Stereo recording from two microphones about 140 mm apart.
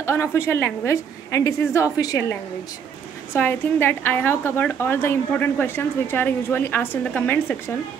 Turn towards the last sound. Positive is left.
turn(degrees=10)  # may be behind; listen again after turning